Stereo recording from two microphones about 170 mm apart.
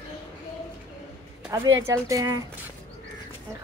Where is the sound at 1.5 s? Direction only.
20° right (ahead or behind).